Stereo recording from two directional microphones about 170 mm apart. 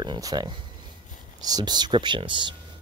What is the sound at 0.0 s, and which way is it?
Speech, 25° right (ahead or behind).